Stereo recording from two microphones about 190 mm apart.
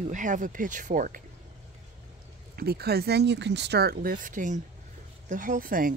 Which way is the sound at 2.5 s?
55° right (ahead or behind).